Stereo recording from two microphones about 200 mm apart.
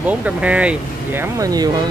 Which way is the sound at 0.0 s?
5° right (ahead or behind).